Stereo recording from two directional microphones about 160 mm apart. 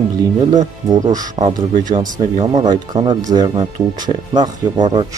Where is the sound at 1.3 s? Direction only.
55° right (ahead or behind).